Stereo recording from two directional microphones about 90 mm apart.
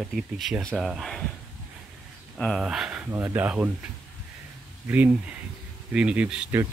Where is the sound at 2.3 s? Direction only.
5° left (ahead or behind).